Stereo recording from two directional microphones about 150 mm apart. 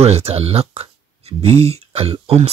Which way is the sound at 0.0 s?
45° right (ahead or behind).